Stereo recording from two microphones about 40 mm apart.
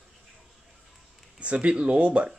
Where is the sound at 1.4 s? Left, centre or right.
Right.